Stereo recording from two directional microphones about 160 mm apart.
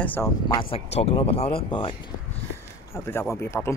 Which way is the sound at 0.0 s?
10° left (ahead or behind).